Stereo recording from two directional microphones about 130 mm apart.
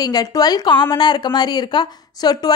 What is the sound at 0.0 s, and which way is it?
A woman's voice, 30° left (ahead or behind).